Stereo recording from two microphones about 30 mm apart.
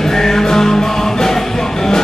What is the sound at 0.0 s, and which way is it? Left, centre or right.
Music, centre.